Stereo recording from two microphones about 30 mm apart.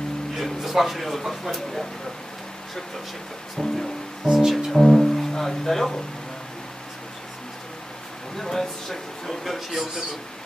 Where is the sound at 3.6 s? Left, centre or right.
Centre.